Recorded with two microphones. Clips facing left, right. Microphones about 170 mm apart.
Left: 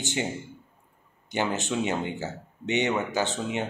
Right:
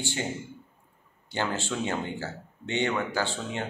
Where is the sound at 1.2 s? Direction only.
20° left (ahead or behind).